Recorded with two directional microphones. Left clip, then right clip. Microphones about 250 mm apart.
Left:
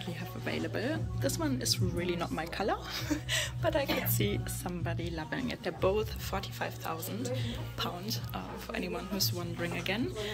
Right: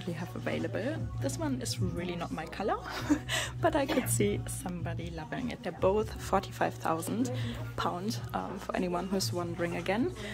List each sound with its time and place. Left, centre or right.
0.0 s speech: centre
2.9 s speech: right
4.3 s speech: centre
6.3 s speech: right